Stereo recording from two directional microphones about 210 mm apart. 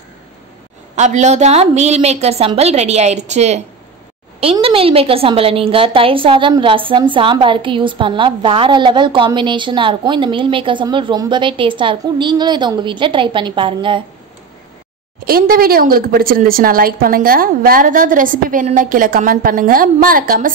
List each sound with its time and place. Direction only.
0.9 s a woman's voice: 35° right (ahead or behind)
15.2 s a woman's voice: 45° right (ahead or behind)